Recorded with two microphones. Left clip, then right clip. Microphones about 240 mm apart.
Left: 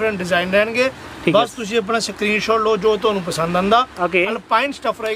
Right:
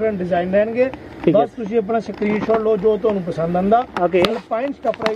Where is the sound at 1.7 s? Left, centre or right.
Left.